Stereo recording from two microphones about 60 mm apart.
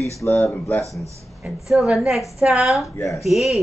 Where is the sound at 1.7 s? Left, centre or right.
Centre.